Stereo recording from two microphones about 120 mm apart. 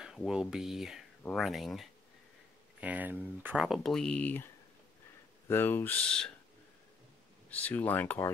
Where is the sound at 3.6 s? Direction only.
Centre (ahead or behind).